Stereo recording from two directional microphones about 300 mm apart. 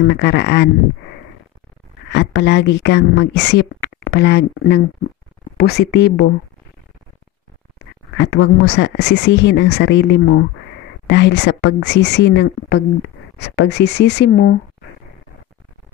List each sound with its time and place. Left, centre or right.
0.0 s speech: left
2.0 s speech: left
8.2 s speech: left